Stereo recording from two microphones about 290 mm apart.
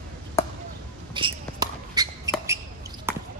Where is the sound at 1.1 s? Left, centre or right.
Centre.